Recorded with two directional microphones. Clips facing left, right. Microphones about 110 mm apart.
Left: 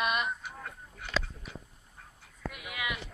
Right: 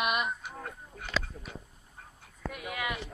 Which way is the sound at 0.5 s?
35° right (ahead or behind).